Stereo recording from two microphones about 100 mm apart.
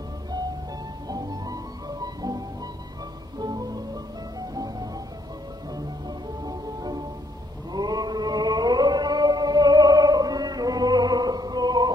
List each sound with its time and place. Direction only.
1.0 s music: 40° right (ahead or behind)
7.7 s chant: 40° right (ahead or behind)